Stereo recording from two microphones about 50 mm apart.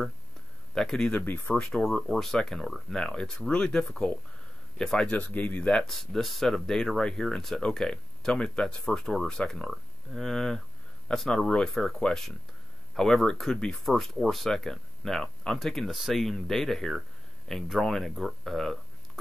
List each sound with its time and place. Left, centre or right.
0.7 s speech: centre
1.1 s speech: left
1.5 s speech: centre
5.1 s speech: left
5.9 s speech: centre
7.0 s speech: centre